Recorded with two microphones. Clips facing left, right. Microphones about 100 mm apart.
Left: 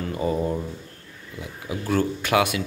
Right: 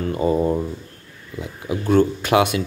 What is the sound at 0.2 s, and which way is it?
Speech, 30° right (ahead or behind).